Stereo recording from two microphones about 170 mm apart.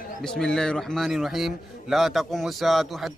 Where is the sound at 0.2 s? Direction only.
5° left (ahead or behind).